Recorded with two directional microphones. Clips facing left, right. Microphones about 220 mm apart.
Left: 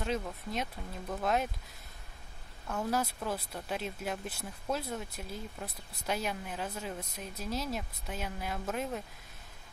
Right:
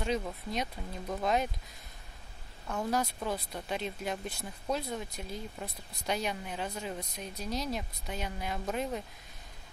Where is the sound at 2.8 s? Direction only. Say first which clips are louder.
Right 1 dB; 5° left (ahead or behind).